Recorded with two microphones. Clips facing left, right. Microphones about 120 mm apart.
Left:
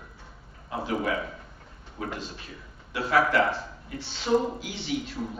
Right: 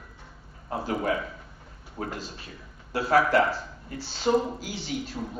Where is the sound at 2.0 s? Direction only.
40° right (ahead or behind).